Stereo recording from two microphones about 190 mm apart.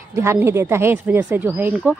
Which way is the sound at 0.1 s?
15° right (ahead or behind).